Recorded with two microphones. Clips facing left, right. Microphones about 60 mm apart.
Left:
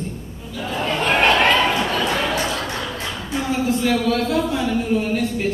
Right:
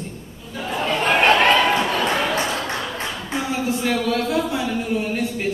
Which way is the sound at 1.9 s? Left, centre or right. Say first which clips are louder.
Even; right.